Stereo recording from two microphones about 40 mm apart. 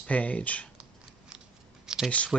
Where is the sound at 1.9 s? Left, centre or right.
Centre.